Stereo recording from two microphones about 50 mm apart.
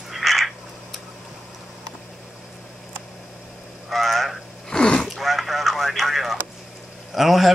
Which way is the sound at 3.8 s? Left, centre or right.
Centre.